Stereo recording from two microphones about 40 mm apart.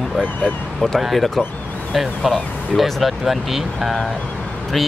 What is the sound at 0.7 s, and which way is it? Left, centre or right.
Speech, centre.